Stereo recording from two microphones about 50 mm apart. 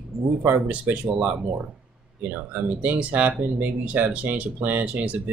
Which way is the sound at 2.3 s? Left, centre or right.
Right.